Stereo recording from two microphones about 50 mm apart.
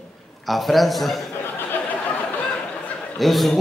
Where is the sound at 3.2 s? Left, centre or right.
Centre.